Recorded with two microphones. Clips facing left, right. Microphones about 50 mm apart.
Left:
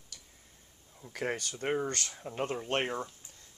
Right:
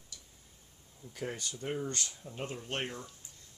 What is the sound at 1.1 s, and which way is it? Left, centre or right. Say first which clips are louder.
Speech: left 5 dB; left.